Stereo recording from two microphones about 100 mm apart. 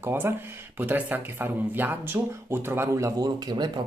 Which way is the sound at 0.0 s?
25° right (ahead or behind).